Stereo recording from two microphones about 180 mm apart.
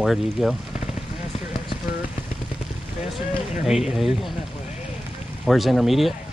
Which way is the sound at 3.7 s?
Centre (ahead or behind).